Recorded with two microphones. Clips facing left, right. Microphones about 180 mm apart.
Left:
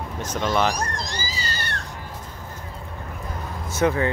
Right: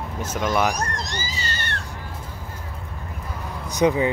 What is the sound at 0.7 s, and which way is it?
Speech, 30° left (ahead or behind).